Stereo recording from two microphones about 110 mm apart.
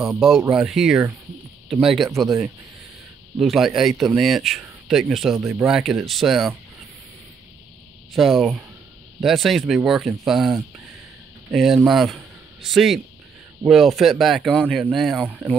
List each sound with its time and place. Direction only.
0.0 s speech: centre (ahead or behind)
3.3 s speech: centre (ahead or behind)
5.4 s speech: 25° right (ahead or behind)
5.7 s speech: 5° right (ahead or behind)
8.1 s speech: 5° right (ahead or behind)
15.2 s speech: 15° right (ahead or behind)